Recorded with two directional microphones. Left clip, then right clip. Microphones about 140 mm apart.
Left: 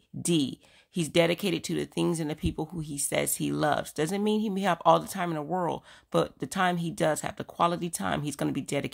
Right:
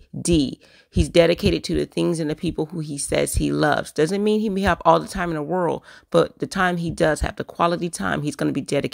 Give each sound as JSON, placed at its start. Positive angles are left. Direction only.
{"t": 0.2, "sound": "speech", "side_deg": -40}